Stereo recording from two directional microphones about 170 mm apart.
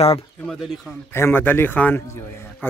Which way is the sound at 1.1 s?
15° left (ahead or behind).